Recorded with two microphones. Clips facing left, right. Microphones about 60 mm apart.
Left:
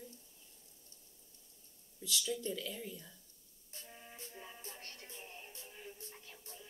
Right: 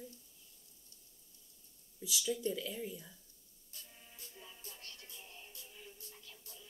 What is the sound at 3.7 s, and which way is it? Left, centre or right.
Music, left.